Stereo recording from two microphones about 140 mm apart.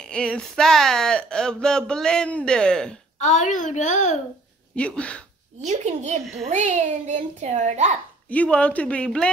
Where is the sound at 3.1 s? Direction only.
55° left (ahead or behind).